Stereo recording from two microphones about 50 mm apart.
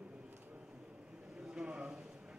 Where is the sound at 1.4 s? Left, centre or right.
Centre.